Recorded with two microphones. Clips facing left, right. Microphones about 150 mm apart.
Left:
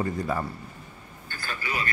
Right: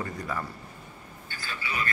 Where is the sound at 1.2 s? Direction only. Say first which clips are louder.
Left 3 dB; 50° left (ahead or behind).